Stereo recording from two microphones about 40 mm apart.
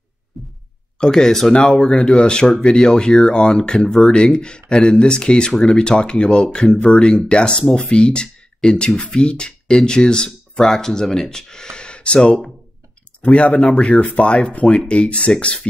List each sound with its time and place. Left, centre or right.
0.3 s pulse: centre
1.1 s speech: centre
1.8 s speech: left
2.5 s speech: centre
3.3 s speech: left
5.6 s speech: centre; by 13.5 s left
13.5 s speech: centre
13.7 s speech: left